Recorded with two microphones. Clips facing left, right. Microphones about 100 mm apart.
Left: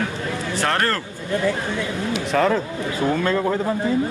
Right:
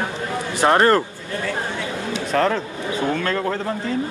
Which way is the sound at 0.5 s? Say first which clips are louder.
Right 7 dB; 20° right (ahead or behind).